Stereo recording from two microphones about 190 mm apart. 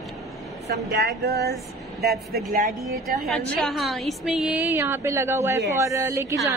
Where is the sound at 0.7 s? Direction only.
55° right (ahead or behind).